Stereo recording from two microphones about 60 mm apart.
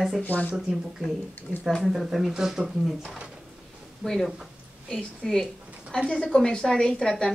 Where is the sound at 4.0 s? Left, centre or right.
Centre.